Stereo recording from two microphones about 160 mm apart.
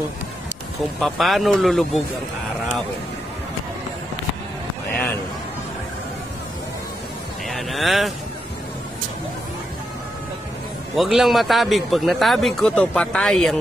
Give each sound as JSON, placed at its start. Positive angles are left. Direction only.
{"t": 1.0, "sound": "a man's voice", "side_deg": 0}
{"t": 7.4, "sound": "a sound", "side_deg": 0}
{"t": 11.0, "sound": "a man's voice", "side_deg": 0}